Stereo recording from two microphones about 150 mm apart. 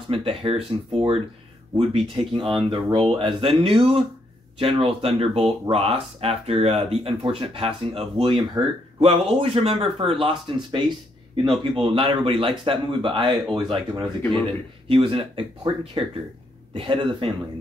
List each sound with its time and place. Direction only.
0.1 s speech: 40° right (ahead or behind)